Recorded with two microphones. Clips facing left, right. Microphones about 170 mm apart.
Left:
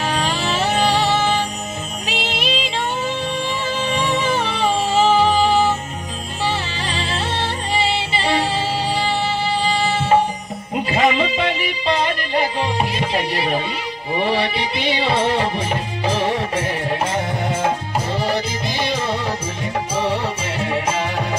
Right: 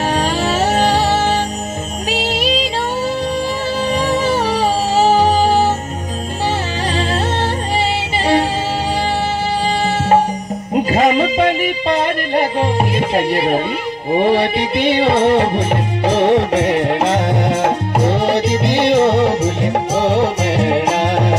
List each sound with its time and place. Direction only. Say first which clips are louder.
0.1 s music: right 5 dB; 45° right (ahead or behind)
3.9 s music: right 4 dB; 40° right (ahead or behind)
8.2 s music: right 6 dB; 45° right (ahead or behind)
10.9 s music: right 3 dB; 45° right (ahead or behind); by 21.4 s 70° right (ahead or behind)